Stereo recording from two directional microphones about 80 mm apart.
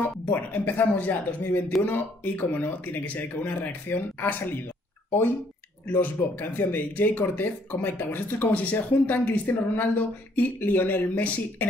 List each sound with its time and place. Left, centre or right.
0.0 s speech: left
5.9 s speech: left